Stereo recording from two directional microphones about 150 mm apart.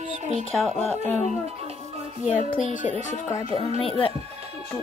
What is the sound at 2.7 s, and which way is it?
Speech, 55° left (ahead or behind).